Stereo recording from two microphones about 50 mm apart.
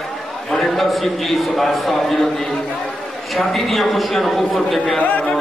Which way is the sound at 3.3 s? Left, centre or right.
Centre.